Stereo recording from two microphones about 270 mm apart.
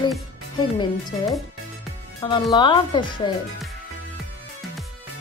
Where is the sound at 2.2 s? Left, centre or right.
Centre.